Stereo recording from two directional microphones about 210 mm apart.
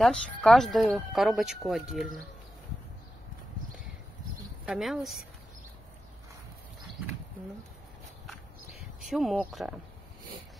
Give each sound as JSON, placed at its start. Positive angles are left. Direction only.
{"t": 0.0, "sound": "speech", "side_deg": 0}
{"t": 4.6, "sound": "speech", "side_deg": -5}
{"t": 8.6, "sound": "a sound", "side_deg": 0}